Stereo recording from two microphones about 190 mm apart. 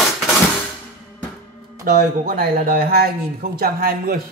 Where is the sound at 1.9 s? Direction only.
55° right (ahead or behind).